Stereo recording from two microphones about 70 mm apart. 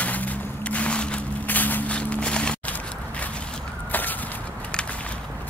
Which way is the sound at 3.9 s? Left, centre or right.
Left.